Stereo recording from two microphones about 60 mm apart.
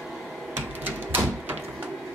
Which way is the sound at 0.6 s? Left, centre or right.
Right.